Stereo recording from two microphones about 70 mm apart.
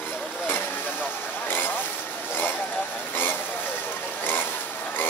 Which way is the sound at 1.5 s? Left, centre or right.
Left.